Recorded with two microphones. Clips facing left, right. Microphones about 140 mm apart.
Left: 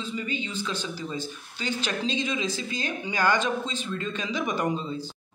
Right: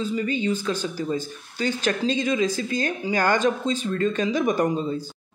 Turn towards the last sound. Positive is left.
turn(degrees=-45)  # may be behind; listen again after turning